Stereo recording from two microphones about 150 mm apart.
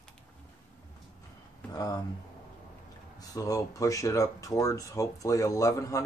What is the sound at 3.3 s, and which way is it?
Speech, 20° left (ahead or behind).